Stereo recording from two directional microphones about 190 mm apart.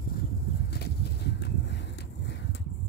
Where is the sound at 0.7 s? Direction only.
60° left (ahead or behind).